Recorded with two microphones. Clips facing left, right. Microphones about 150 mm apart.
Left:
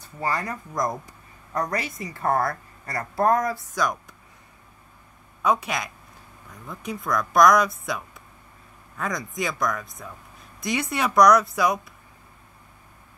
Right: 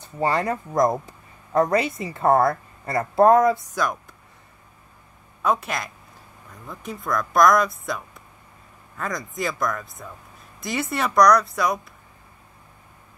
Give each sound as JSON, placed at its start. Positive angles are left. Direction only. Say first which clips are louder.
{"t": 0.0, "sound": "speech", "louder": "right 5 dB", "side_deg": -25}
{"t": 3.7, "sound": "speech", "louder": "even", "side_deg": 0}
{"t": 5.4, "sound": "speech", "louder": "even", "side_deg": 0}